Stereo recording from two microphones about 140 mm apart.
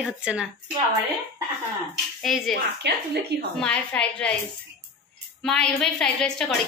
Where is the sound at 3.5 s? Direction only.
5° left (ahead or behind).